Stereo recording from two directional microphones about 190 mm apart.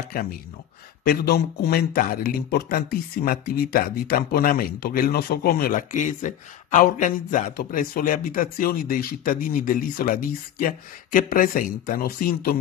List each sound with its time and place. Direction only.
0.1 s speech: 50° left (ahead or behind)